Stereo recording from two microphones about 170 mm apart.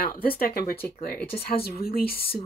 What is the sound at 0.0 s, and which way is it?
Speech, 60° left (ahead or behind).